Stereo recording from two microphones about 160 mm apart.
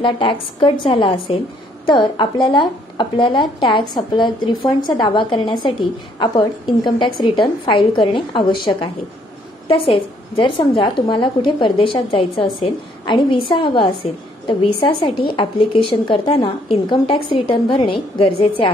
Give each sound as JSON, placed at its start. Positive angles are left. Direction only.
{"t": 0.0, "sound": "a woman's voice", "side_deg": 30}
{"t": 9.7, "sound": "a woman's voice", "side_deg": 35}